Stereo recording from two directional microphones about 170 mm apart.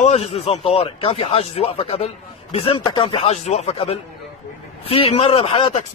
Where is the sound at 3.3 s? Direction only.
40° left (ahead or behind).